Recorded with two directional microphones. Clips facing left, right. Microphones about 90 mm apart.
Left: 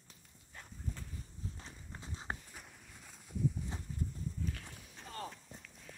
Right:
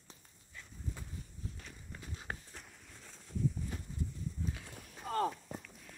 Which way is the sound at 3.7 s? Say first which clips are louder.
Right 1 dB; 25° left (ahead or behind).